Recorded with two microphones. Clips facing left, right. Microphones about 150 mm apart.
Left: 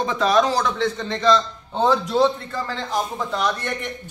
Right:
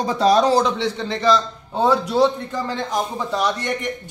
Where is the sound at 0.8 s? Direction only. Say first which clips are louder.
Even; 10° right (ahead or behind).